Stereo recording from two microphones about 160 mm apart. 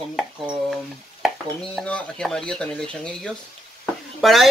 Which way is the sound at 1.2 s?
5° left (ahead or behind).